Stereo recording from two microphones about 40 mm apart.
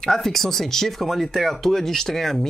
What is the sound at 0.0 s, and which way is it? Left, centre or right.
Speech, centre.